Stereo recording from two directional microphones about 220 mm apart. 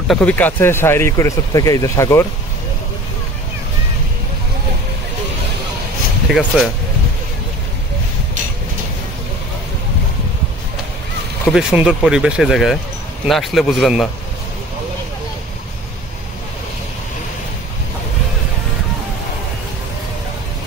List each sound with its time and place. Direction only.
0.1 s speech: 5° left (ahead or behind)
6.3 s speech: centre (ahead or behind)
11.4 s speech: 5° right (ahead or behind)